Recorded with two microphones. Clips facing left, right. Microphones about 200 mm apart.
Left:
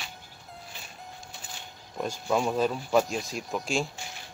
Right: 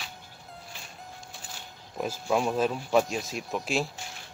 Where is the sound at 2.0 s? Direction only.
5° right (ahead or behind).